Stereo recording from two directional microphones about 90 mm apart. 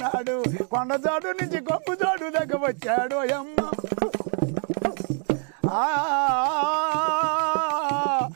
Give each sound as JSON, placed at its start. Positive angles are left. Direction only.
{"t": 0.0, "sound": "music", "side_deg": -15}
{"t": 5.8, "sound": "music", "side_deg": -15}